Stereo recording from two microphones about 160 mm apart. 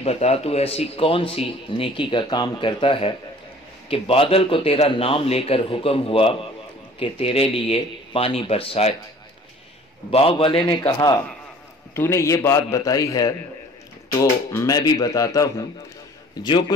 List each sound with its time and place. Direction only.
0.0 s a man's voice: 40° left (ahead or behind)
10.1 s a man's voice: 35° left (ahead or behind)